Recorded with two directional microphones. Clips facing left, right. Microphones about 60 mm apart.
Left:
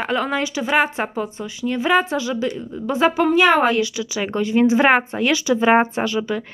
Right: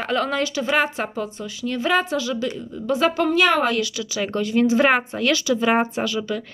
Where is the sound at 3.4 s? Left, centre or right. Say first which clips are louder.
Left 3 dB; left.